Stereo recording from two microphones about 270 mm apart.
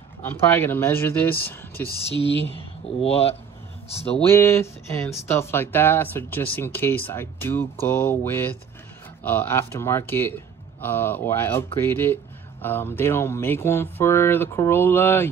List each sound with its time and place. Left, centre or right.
0.2 s speech: centre
1.9 s speech: centre
3.0 s speech: left
4.3 s speech: centre